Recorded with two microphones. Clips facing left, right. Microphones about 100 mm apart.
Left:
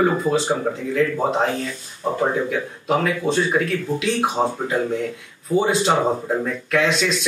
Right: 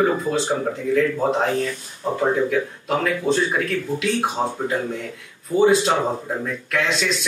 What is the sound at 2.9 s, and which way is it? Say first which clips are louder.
Speech: left 1 dB; centre (ahead or behind).